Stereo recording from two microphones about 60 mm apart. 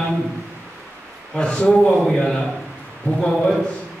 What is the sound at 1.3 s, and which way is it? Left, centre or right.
Speech, centre.